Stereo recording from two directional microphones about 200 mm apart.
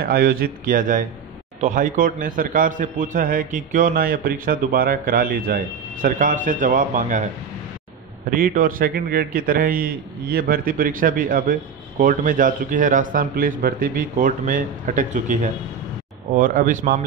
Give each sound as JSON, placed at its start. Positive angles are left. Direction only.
{"t": 0.0, "sound": "a man's voice", "side_deg": -45}
{"t": 8.3, "sound": "a man's voice", "side_deg": -45}